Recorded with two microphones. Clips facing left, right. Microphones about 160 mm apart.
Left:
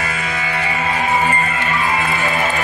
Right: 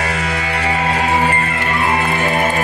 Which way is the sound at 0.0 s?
70° right (ahead or behind).